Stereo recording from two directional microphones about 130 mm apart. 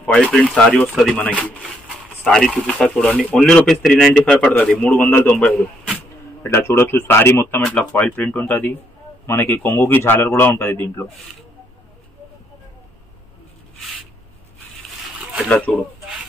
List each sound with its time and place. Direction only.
0.0 s a man's voice: 10° left (ahead or behind)
1.4 s a sound: 5° right (ahead or behind)
2.3 s a man's voice: 5° left (ahead or behind)
15.4 s a man's voice: 10° left (ahead or behind)